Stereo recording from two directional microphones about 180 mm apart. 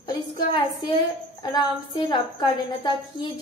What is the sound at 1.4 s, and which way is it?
A woman's voice, 25° left (ahead or behind).